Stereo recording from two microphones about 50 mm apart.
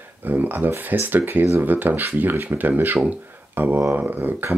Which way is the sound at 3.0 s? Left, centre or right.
Right.